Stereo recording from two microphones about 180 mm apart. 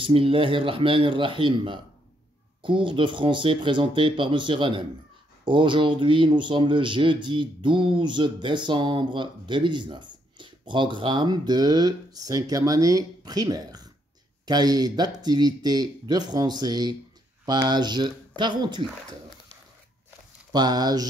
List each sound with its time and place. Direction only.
0.0 s speech: 30° right (ahead or behind)
20.5 s speech: 25° right (ahead or behind)